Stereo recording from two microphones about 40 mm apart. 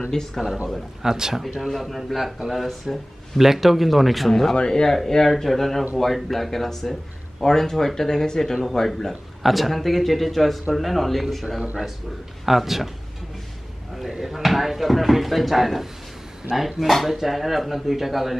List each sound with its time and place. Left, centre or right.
0.1 s a man's voice: centre
1.0 s speech: centre
1.7 s speech: centre
4.6 s a man's voice: centre
4.9 s a man's voice: centre
12.4 s speech: centre
14.2 s speech: centre